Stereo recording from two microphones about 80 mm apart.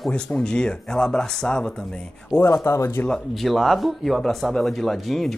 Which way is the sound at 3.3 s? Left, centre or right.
Centre.